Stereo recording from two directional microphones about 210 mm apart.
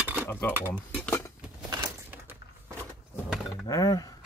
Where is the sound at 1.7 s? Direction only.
20° right (ahead or behind).